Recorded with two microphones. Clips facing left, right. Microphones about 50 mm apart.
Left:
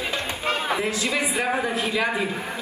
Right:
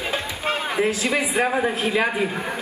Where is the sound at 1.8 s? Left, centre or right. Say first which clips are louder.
Right 3 dB; right.